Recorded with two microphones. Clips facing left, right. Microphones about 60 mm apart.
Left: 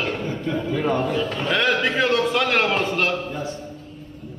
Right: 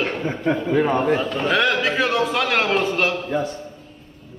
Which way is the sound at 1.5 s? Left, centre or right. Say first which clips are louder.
Right 1 dB; centre.